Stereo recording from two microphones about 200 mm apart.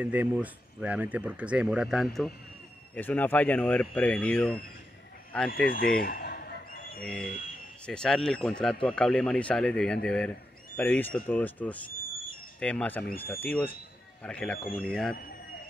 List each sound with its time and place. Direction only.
0.0 s speech: 10° right (ahead or behind)
5.5 s speech: 45° left (ahead or behind)
5.9 s a sound: 50° left (ahead or behind)
7.8 s speech: 5° left (ahead or behind)